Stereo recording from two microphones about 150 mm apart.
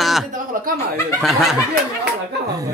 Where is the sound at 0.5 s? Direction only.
65° right (ahead or behind).